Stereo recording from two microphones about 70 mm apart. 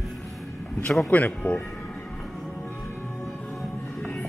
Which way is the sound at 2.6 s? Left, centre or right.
Left.